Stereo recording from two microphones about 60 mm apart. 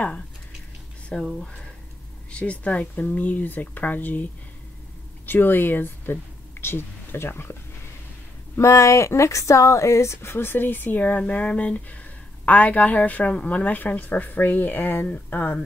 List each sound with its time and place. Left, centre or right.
1.1 s speech: centre
2.3 s a woman's voice: left
8.5 s a woman's voice: left